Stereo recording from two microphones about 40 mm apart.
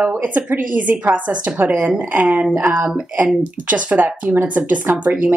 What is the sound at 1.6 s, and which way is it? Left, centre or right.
Speech, right.